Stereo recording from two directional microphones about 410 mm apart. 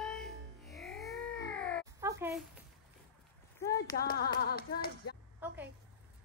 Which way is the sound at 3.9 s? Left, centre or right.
Left.